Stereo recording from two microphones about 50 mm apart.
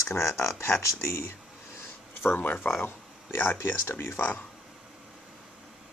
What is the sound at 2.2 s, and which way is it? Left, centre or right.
Speech, left.